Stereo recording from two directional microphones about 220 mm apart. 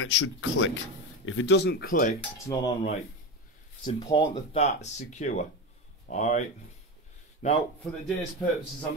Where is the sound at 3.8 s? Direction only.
20° left (ahead or behind).